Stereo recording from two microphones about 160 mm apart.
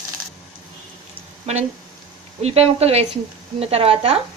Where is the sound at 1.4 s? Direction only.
40° right (ahead or behind).